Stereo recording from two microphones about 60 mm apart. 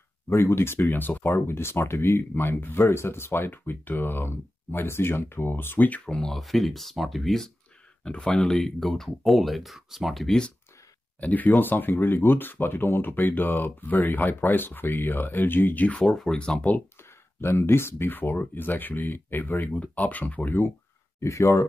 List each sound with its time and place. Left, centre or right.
0.3 s speech: left
5.9 s speech: left
6.3 s speech: centre
8.0 s speech: centre
11.1 s speech: left
17.4 s speech: left
19.7 s speech: left
21.2 s speech: left